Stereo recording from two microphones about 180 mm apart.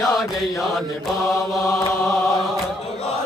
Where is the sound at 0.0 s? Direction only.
Centre (ahead or behind).